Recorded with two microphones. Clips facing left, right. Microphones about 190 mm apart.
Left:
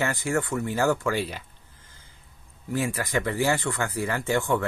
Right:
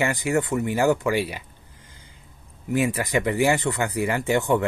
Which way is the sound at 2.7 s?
20° right (ahead or behind).